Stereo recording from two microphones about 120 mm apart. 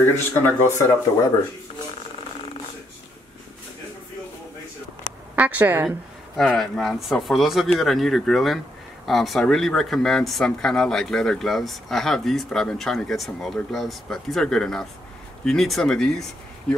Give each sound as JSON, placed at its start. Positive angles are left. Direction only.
{"t": 0.1, "sound": "speech", "side_deg": 20}
{"t": 5.3, "sound": "a woman's voice", "side_deg": -15}
{"t": 5.9, "sound": "speech", "side_deg": 0}